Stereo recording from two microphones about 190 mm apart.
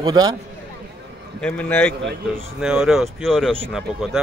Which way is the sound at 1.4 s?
5° left (ahead or behind).